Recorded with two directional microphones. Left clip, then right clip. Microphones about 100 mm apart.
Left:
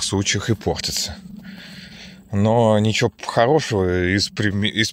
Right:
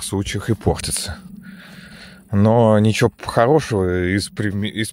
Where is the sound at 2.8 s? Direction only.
55° right (ahead or behind).